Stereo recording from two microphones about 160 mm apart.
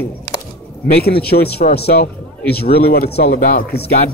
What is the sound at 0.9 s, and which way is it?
Speech, 75° left (ahead or behind).